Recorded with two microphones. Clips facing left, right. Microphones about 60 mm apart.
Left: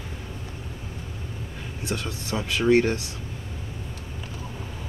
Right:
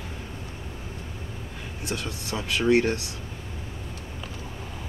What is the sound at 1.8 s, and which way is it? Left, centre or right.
Speech, left.